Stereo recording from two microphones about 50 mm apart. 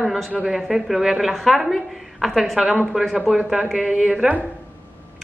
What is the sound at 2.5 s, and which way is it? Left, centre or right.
A man's voice, centre.